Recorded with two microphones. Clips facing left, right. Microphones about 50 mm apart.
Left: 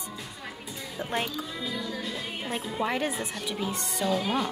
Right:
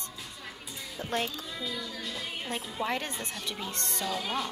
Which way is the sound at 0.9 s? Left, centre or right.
Centre.